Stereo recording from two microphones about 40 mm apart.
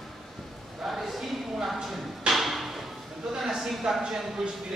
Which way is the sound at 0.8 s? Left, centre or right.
Centre.